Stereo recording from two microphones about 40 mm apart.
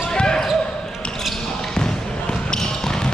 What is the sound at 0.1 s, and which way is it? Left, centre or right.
Basketball bounce, centre.